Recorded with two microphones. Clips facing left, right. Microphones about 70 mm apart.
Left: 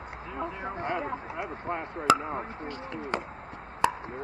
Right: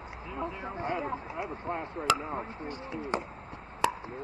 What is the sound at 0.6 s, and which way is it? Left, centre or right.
Speech, left.